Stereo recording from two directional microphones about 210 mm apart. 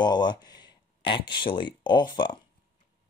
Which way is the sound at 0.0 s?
20° left (ahead or behind).